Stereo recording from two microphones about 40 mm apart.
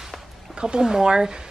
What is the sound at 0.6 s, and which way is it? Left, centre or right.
Speech, centre.